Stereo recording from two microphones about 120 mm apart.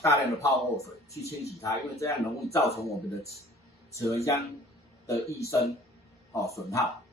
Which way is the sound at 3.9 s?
25° left (ahead or behind).